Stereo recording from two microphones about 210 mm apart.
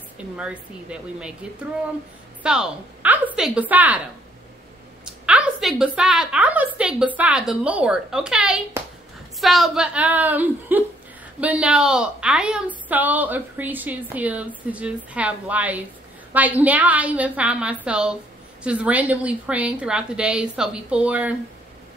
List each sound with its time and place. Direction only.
0.4 s a woman's voice: 5° right (ahead or behind)
2.4 s a woman's voice: 5° right (ahead or behind)
5.0 s a woman's voice: 5° right (ahead or behind)